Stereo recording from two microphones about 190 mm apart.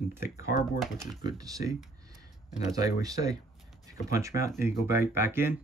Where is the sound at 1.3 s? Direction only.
20° right (ahead or behind).